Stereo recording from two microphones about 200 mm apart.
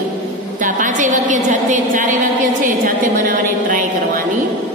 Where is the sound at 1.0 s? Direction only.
40° right (ahead or behind).